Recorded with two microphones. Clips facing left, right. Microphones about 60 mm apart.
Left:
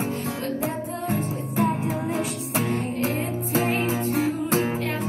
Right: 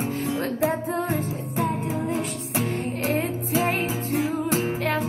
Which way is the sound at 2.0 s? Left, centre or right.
Centre.